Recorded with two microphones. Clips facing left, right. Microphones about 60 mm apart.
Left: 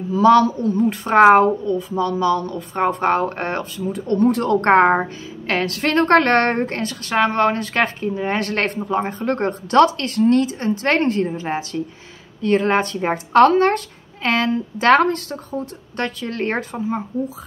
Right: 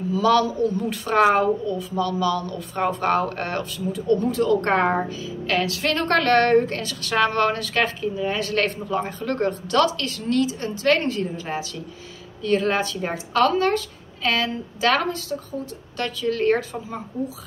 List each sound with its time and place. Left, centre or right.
0.1 s a woman's voice: left
3.9 s a woman's voice: left
16.0 s a woman's voice: left